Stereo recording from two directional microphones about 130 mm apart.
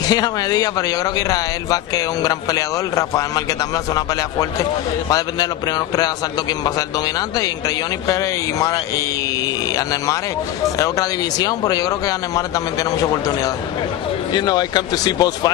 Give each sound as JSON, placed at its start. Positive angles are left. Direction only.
{"t": 0.0, "sound": "speech", "side_deg": 30}
{"t": 7.2, "sound": "speech", "side_deg": 30}
{"t": 10.8, "sound": "speech", "side_deg": 30}
{"t": 14.3, "sound": "speech", "side_deg": 35}